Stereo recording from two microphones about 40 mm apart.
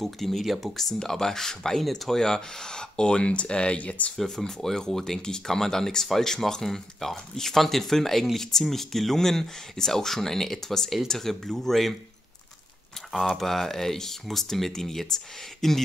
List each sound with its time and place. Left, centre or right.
0.0 s speech: centre; by 4.1 s left
4.2 s speech: centre
13.4 s speech: centre